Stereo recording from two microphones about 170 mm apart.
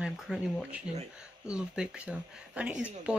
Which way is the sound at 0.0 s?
5° right (ahead or behind).